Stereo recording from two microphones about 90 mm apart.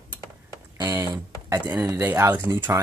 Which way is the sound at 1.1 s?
40° right (ahead or behind).